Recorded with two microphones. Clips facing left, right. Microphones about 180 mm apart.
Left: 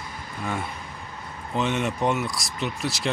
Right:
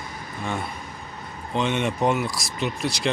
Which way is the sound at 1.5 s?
Centre (ahead or behind).